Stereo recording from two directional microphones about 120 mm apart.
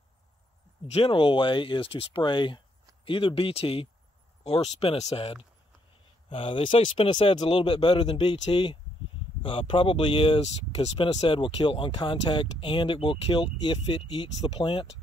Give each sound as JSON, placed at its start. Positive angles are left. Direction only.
{"t": 0.8, "sound": "speech", "side_deg": 55}